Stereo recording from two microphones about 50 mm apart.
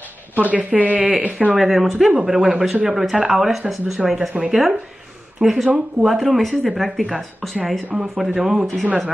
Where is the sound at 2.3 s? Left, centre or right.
Centre.